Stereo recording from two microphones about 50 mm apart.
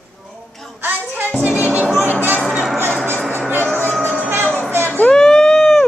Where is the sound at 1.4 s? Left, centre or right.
Right.